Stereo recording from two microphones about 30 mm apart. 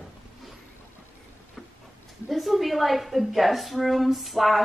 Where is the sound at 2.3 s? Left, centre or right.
Centre.